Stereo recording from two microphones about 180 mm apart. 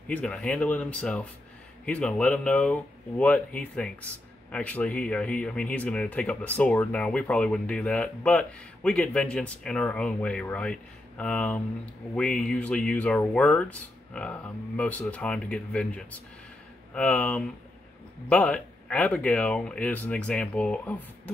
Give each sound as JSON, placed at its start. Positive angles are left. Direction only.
{"t": 0.1, "sound": "speech", "side_deg": 5}